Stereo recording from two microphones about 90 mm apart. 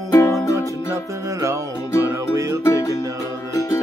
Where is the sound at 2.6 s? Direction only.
35° left (ahead or behind).